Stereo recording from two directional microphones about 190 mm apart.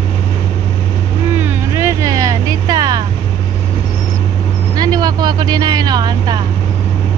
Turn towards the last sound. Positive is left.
turn(degrees=-20)  # may be behind; listen again after turning